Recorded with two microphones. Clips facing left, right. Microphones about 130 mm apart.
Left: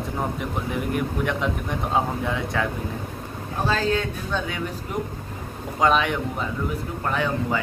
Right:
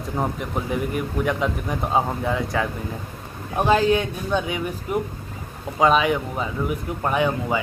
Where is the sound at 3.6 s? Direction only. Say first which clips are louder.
Right 5 dB; 15° right (ahead or behind).